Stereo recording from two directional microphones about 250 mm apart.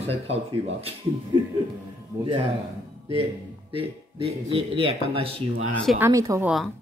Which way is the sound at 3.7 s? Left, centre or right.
Right.